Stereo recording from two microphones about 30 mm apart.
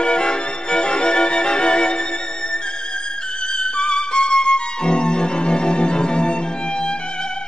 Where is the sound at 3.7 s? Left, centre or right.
Left.